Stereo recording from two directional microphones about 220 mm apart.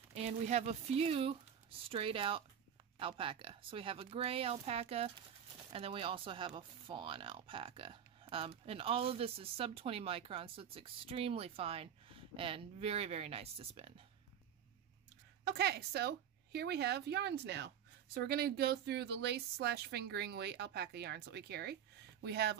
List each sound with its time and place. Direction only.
0.1 s speech: 30° right (ahead or behind)
15.4 s a woman's voice: 45° right (ahead or behind)